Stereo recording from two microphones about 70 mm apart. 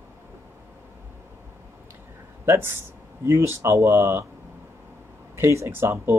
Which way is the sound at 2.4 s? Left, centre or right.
Right.